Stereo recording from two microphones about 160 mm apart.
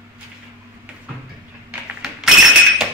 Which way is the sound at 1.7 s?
5° right (ahead or behind).